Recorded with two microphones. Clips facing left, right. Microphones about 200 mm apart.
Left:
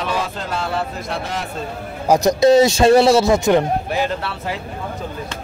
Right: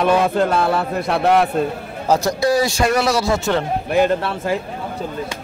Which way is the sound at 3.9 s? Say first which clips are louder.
Right 5 dB; 55° right (ahead or behind).